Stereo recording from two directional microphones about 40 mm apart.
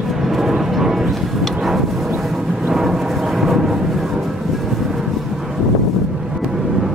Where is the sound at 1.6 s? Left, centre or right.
Centre.